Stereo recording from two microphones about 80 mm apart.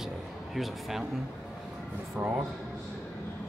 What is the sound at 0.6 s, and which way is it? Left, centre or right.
Speech, centre.